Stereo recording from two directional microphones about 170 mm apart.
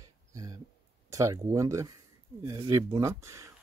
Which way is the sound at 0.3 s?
20° right (ahead or behind).